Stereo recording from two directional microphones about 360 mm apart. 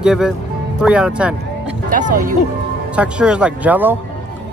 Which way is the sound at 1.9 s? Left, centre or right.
Right.